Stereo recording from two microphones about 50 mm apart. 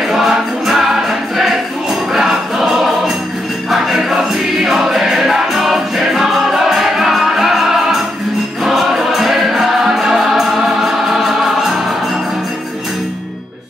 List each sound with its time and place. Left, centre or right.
0.1 s music: centre
3.7 s music: centre